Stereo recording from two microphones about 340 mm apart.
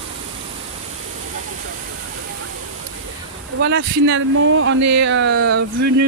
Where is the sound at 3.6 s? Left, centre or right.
Right.